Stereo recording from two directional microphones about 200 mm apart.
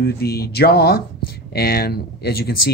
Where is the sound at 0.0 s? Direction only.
50° left (ahead or behind).